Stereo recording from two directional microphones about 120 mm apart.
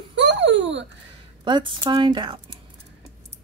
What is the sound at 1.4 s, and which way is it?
Speech, 40° right (ahead or behind).